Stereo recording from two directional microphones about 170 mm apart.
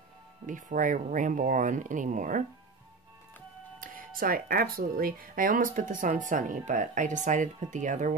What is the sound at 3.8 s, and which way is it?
Speech, 55° right (ahead or behind).